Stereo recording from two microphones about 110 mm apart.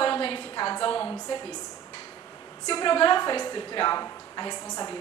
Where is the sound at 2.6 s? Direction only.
40° left (ahead or behind).